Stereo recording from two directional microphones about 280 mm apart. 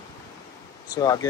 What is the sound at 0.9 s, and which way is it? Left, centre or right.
Speech, centre.